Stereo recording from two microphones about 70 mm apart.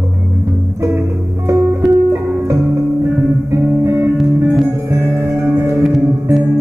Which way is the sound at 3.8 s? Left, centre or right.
Right.